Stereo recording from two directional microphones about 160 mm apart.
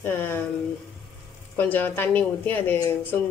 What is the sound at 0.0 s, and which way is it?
Speech, 15° left (ahead or behind).